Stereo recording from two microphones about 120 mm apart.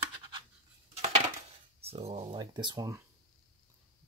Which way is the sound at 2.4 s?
40° right (ahead or behind).